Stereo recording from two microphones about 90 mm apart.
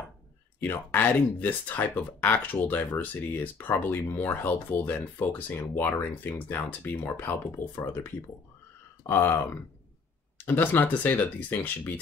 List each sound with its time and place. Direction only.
0.6 s speech: 20° left (ahead or behind)